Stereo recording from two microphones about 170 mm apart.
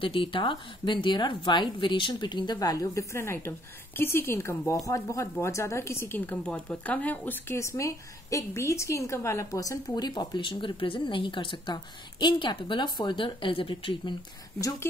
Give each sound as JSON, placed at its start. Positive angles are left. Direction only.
{"t": 0.0, "sound": "speech", "side_deg": 30}
{"t": 14.6, "sound": "speech", "side_deg": 20}